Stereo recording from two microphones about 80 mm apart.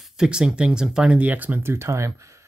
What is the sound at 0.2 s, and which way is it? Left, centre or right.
Speech, centre.